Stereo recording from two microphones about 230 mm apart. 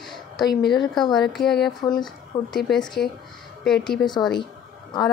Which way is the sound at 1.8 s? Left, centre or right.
Centre.